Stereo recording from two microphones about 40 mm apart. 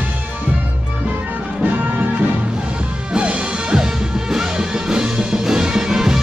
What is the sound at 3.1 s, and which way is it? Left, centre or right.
Music, right.